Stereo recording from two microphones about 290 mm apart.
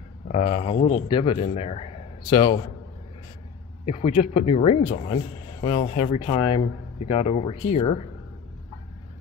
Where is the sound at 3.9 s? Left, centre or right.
Centre.